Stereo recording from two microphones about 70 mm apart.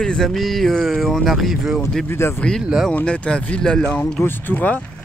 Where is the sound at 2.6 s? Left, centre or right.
Centre.